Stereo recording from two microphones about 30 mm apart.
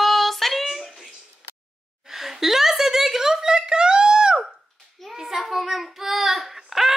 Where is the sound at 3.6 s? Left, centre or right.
Right.